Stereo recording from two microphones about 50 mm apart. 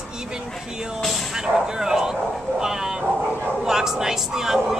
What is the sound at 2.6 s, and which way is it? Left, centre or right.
Dog, centre.